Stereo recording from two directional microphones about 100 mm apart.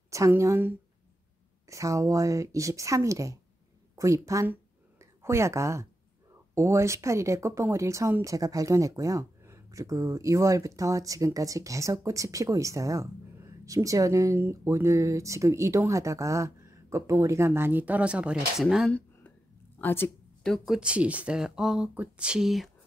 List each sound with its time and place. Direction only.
0.4 s a woman's voice: 25° right (ahead or behind)
4.5 s a sound: 25° right (ahead or behind)
6.5 s speech: 30° right (ahead or behind); by 18.9 s 5° right (ahead or behind)
18.9 s a sound: 15° left (ahead or behind)
19.8 s a woman's voice: 20° left (ahead or behind)
20.4 s speech: 5° left (ahead or behind)
20.7 s speech: 10° right (ahead or behind)